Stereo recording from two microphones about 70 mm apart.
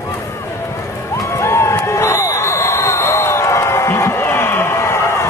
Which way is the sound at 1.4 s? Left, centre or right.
Left.